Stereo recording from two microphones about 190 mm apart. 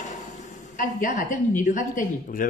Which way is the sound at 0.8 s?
45° left (ahead or behind).